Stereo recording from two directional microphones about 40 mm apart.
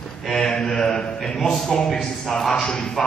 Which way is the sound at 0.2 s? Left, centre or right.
Centre.